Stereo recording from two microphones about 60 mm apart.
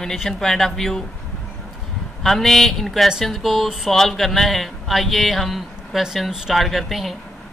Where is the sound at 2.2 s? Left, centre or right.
Centre.